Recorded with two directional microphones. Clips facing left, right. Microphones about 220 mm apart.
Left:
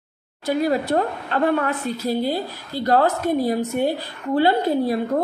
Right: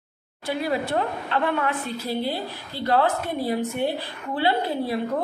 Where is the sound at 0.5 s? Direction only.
40° left (ahead or behind).